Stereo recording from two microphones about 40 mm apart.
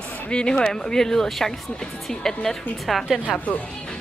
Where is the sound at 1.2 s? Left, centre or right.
Centre.